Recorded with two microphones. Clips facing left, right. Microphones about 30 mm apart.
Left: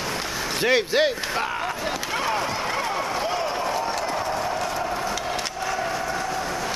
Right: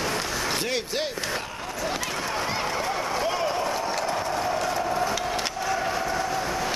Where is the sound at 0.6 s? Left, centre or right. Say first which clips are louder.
Left 8 dB; left.